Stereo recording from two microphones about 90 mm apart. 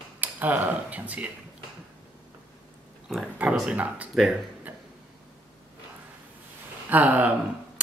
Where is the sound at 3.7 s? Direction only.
15° right (ahead or behind).